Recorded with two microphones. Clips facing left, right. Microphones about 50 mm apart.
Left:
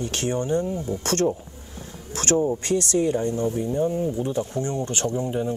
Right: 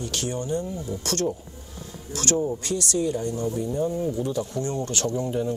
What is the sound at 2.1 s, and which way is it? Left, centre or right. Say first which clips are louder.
Insect: left 3 dB; left.